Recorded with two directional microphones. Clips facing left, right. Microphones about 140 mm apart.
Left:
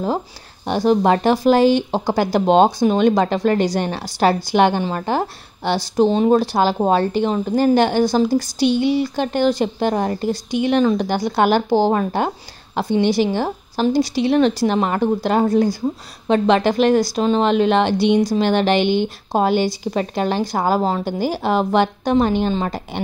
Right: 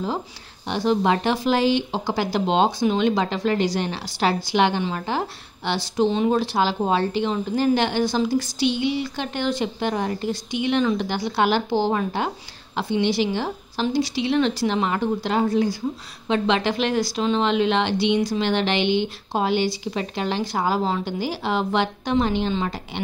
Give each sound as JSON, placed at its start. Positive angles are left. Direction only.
{"t": 0.7, "sound": "speech", "side_deg": 45}